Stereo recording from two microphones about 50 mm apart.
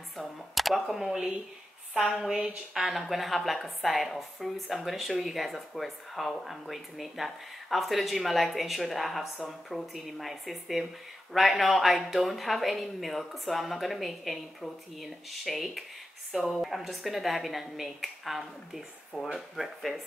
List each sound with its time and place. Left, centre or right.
0.2 s a woman's voice: centre
2.7 s a woman's voice: centre